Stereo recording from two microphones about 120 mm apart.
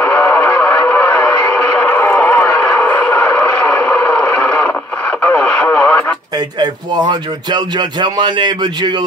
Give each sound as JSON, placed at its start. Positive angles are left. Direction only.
{"t": 0.0, "sound": "music", "side_deg": 15}
{"t": 1.5, "sound": "a sound", "side_deg": 15}
{"t": 5.2, "sound": "radio", "side_deg": 15}
{"t": 6.6, "sound": "speech", "side_deg": -35}